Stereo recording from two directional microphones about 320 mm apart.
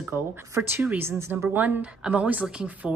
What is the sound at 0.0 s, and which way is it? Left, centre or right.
Speech, centre.